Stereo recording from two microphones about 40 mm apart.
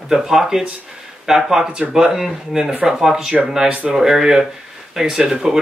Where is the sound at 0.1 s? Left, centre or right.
Centre.